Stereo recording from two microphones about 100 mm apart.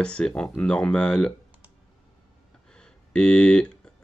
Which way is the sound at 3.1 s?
10° left (ahead or behind).